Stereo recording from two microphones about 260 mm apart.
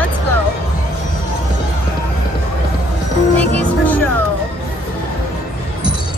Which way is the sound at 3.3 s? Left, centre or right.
Centre.